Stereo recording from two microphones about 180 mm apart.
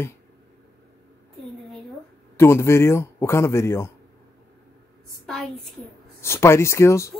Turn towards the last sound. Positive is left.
turn(degrees=15)  # may be behind; listen again after turning